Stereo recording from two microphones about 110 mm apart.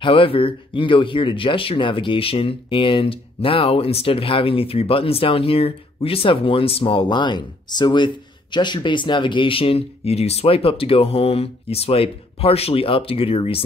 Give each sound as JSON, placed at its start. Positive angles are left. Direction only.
{"t": 0.0, "sound": "speech", "side_deg": 55}